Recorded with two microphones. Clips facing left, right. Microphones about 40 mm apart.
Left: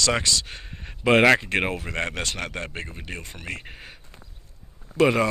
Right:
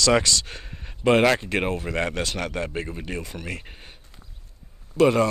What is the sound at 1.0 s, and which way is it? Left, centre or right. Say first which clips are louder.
Speech: left 1 dB; left.